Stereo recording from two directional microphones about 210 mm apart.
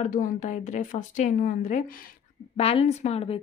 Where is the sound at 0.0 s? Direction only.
35° left (ahead or behind).